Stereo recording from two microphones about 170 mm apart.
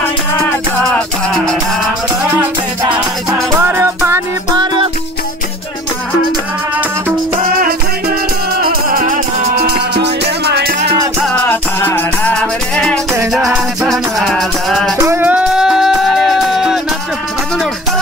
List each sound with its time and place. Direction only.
3.3 s music: 10° right (ahead or behind)
7.6 s music: 60° right (ahead or behind)
11.3 s music: 15° left (ahead or behind)
15.0 s music: 15° right (ahead or behind)